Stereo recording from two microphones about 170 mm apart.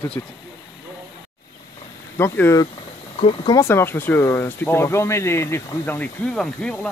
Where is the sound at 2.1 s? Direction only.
15° left (ahead or behind).